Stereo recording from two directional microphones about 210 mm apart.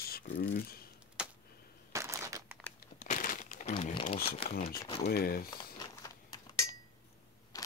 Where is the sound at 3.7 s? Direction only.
25° left (ahead or behind).